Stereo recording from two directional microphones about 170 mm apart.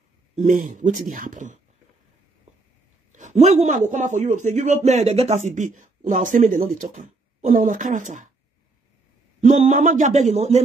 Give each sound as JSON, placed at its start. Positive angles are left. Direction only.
{"t": 0.4, "sound": "a man's voice", "side_deg": -50}
{"t": 3.1, "sound": "a man's voice", "side_deg": -45}
{"t": 9.4, "sound": "a man's voice", "side_deg": -45}